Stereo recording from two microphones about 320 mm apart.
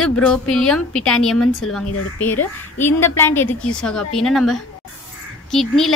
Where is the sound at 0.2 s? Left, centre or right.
Centre.